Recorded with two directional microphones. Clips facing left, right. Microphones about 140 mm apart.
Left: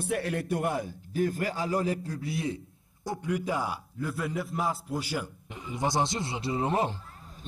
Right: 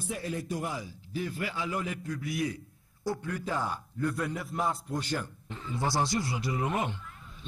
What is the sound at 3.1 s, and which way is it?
A man's voice, 15° left (ahead or behind).